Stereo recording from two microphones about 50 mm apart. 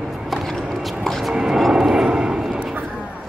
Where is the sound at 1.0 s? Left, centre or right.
Centre.